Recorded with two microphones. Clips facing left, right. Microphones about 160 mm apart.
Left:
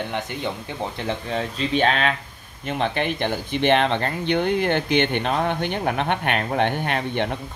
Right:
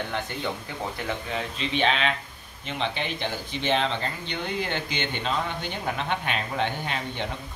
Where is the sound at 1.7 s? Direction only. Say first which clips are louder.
Left 4 dB; 45° left (ahead or behind).